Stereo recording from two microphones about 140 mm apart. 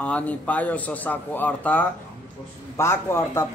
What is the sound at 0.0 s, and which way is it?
A man's voice, 10° left (ahead or behind).